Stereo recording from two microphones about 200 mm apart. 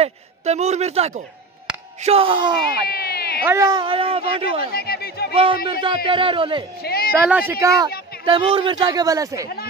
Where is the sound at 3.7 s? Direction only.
25° right (ahead or behind).